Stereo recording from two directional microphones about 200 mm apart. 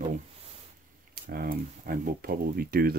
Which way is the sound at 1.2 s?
50° right (ahead or behind).